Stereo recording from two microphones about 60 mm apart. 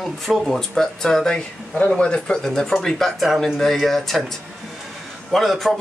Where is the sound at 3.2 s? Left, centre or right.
Centre.